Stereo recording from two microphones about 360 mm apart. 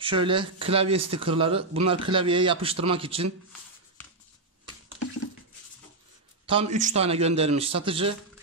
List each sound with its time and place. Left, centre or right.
0.0 s speech: centre
6.4 s speech: centre